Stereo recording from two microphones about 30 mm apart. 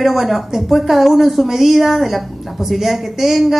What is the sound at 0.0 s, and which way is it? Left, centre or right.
A woman's voice, centre.